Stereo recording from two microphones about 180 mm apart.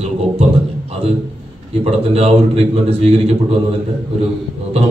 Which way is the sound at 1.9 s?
35° right (ahead or behind).